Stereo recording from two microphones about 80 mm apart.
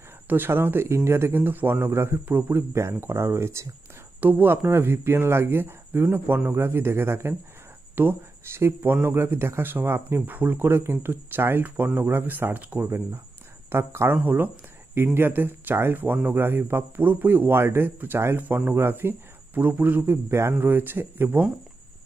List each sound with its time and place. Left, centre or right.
0.3 s speech: right